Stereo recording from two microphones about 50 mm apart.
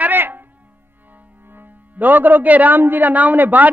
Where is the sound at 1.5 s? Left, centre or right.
Right.